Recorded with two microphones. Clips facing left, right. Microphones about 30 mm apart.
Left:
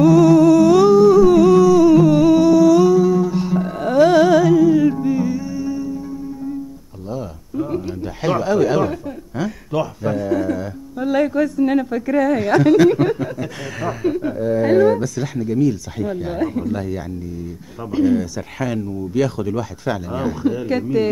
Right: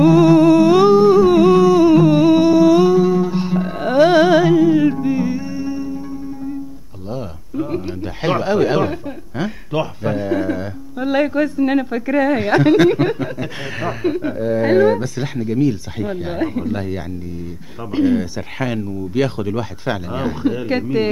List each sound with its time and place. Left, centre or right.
0.0 s music: right
7.1 s a sound: right
17.9 s speech: right